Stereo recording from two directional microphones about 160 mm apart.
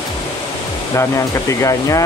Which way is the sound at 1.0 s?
20° left (ahead or behind).